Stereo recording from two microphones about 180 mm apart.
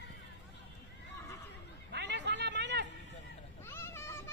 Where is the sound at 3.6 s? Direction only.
15° left (ahead or behind).